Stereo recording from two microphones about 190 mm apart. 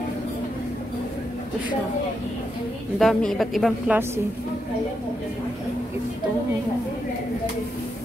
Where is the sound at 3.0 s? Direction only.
Centre (ahead or behind).